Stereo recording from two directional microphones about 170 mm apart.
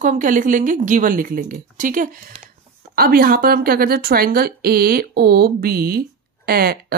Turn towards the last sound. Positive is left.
turn(degrees=-60)  # may be behind; listen again after turning